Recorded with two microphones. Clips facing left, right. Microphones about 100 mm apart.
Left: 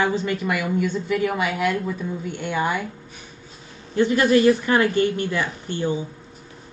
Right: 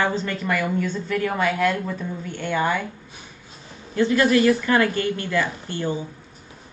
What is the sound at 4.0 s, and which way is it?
A woman's voice, 20° left (ahead or behind).